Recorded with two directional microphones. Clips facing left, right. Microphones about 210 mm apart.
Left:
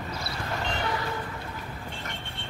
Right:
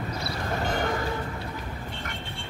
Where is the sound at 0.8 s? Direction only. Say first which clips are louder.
Right 3 dB; 50° right (ahead or behind).